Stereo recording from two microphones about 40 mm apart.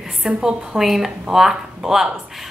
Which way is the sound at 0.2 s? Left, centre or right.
Centre.